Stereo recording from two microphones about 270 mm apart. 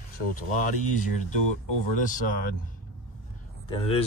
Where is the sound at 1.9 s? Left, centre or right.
Left.